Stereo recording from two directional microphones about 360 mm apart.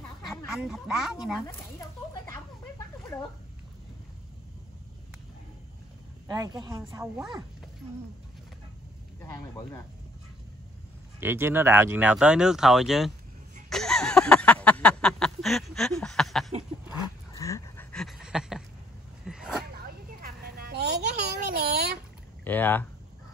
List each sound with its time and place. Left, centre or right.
0.5 s speech: centre
6.2 s speech: centre
9.2 s speech: centre
11.1 s speech: centre
13.7 s a sound: centre
20.2 s a sound: right
22.4 s speech: centre